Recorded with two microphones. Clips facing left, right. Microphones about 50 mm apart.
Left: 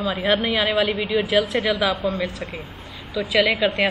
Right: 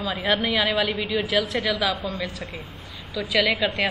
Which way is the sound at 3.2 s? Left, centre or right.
Centre.